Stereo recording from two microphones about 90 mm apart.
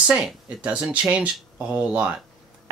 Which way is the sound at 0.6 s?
15° right (ahead or behind).